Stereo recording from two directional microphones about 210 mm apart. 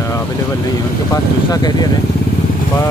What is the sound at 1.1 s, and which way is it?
Speech, 20° left (ahead or behind).